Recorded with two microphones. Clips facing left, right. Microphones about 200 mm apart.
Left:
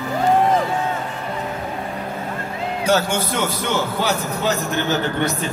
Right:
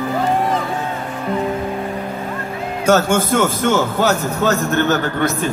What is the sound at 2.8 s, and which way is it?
A man's voice, 50° right (ahead or behind).